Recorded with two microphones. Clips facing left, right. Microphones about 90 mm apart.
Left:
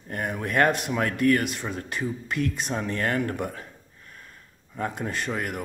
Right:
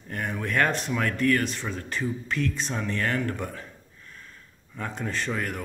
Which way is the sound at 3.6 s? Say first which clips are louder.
Even; 35° left (ahead or behind).